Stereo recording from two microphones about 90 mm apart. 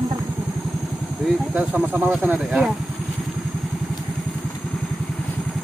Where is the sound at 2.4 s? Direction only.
5° right (ahead or behind).